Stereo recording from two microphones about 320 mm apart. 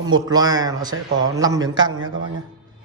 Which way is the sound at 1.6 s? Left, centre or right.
Right.